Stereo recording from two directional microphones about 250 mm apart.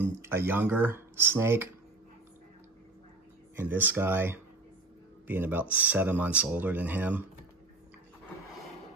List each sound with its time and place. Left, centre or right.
0.2 s speech: centre
3.5 s speech: centre